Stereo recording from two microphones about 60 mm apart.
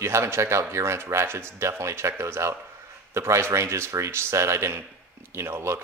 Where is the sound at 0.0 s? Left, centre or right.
Right.